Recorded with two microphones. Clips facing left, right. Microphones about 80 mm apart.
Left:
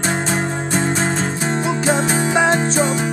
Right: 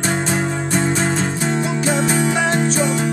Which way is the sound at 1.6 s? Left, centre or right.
Left.